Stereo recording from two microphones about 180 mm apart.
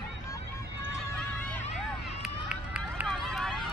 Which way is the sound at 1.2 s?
5° left (ahead or behind).